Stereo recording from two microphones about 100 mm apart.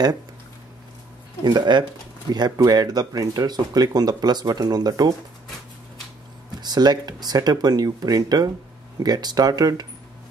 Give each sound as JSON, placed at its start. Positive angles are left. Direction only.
{"t": 1.4, "sound": "speech", "side_deg": -45}
{"t": 6.6, "sound": "speech", "side_deg": -45}